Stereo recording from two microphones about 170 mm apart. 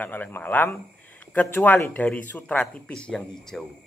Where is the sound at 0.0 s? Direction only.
10° left (ahead or behind).